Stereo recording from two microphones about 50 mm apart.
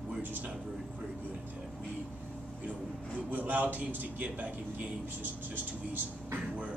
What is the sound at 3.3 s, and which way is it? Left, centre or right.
A man's voice, right.